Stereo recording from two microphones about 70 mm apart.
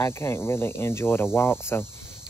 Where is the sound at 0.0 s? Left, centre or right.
Left.